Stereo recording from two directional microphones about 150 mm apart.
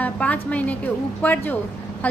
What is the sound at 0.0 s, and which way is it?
A woman's voice, 10° left (ahead or behind).